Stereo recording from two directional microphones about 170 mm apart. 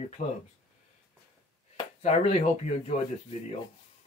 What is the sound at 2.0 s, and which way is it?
Speech, 40° left (ahead or behind).